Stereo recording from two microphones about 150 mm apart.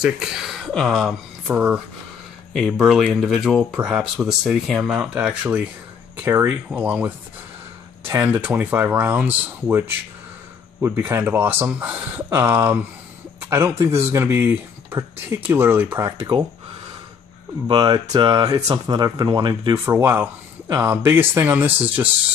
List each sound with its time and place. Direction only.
0.0 s speech: 5° right (ahead or behind)
1.5 s speech: 10° right (ahead or behind)
8.1 s speech: 15° right (ahead or behind)
17.6 s speech: 30° right (ahead or behind)
19.8 s speech: 15° right (ahead or behind)